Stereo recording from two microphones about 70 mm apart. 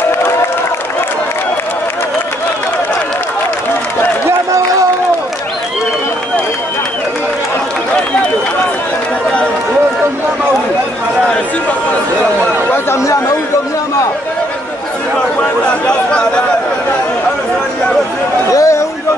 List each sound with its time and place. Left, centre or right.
12.7 s chatter: left
15.6 s chatter: centre
18.5 s chatter: left